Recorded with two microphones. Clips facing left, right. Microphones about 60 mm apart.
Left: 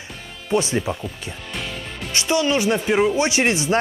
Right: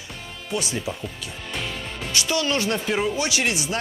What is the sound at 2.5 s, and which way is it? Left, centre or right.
Speech, centre.